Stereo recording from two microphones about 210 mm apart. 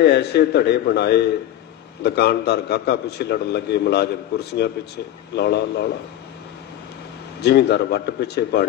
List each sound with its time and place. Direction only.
0.0 s a man's voice: 50° left (ahead or behind)
7.4 s a man's voice: 50° left (ahead or behind)